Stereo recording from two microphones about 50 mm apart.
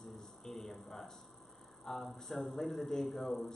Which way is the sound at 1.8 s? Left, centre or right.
Centre.